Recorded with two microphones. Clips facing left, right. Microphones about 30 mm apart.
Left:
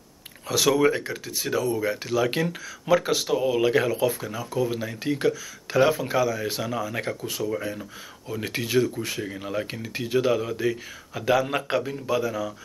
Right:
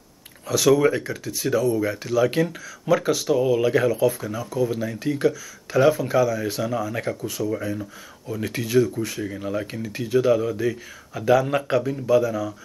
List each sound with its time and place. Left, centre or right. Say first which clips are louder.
0.5 s speech: right 3 dB; centre
8.3 s speech: right 2 dB; centre